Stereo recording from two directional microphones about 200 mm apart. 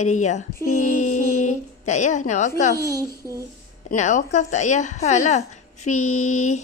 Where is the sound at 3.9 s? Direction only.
35° left (ahead or behind).